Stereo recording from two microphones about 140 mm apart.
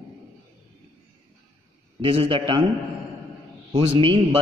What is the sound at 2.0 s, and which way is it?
Speech, 40° right (ahead or behind).